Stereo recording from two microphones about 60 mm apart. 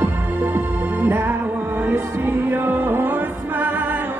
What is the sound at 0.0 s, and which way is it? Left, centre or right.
Music, right.